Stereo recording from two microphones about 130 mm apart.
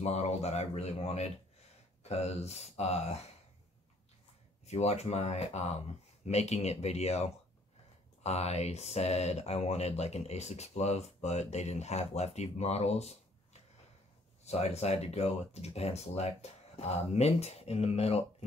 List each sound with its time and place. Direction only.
0.0 s speech: 55° left (ahead or behind)
4.6 s speech: 55° left (ahead or behind)